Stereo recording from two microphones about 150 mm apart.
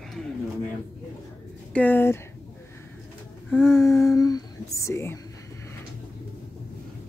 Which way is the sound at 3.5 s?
15° left (ahead or behind).